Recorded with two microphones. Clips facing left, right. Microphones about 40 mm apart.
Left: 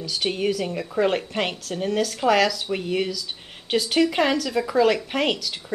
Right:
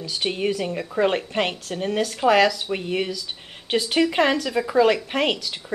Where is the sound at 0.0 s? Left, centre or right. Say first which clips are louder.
Even; centre.